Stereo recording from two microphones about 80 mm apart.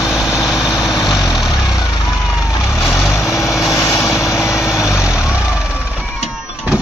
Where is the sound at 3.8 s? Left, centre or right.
Left.